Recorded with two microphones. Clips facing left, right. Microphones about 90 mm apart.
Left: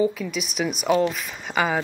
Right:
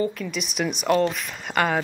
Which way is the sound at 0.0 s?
Centre (ahead or behind).